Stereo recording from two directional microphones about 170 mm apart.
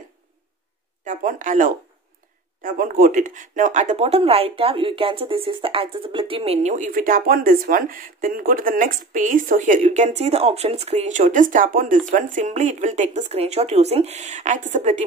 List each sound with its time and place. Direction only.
1.0 s speech: 50° right (ahead or behind)